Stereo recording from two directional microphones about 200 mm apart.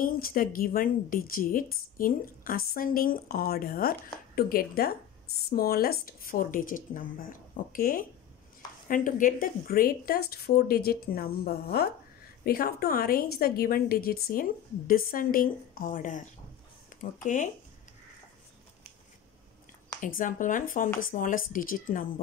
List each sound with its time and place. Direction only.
0.0 s a woman's voice: 45° left (ahead or behind)
20.0 s a woman's voice: 40° left (ahead or behind)